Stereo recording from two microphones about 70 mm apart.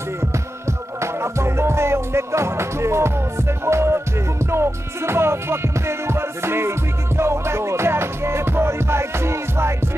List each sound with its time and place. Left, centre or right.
1.0 s music: right